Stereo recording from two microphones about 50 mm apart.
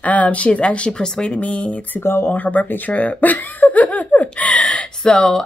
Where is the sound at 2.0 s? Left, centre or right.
Left.